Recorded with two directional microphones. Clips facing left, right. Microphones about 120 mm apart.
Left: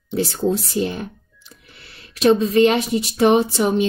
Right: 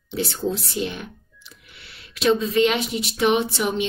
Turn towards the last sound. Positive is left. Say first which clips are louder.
# left 5 dB
turn(degrees=40)  # may be behind; listen again after turning